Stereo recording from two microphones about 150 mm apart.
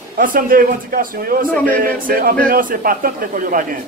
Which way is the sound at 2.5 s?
65° right (ahead or behind).